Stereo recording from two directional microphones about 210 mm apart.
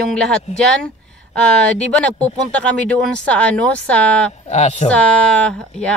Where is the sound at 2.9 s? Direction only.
5° left (ahead or behind).